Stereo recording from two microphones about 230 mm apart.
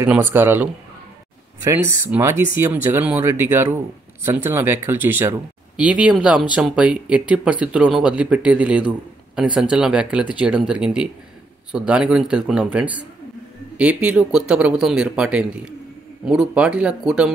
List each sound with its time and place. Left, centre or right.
0.0 s speech: centre
2.0 s speech: centre